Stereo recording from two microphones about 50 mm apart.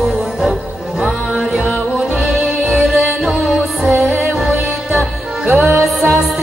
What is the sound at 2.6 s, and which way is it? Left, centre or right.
Music, centre.